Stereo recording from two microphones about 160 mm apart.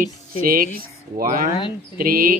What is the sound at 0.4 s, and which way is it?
Speech, 65° right (ahead or behind).